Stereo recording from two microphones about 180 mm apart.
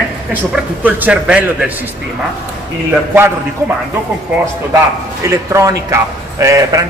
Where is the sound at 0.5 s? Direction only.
10° right (ahead or behind).